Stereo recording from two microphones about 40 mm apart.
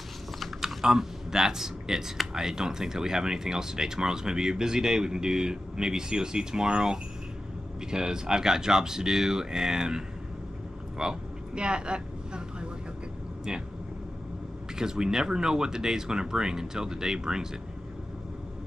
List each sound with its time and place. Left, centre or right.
0.6 s typing: centre
0.8 s speech: centre
11.0 s vehicle: right
13.5 s speech: centre
14.8 s speech: centre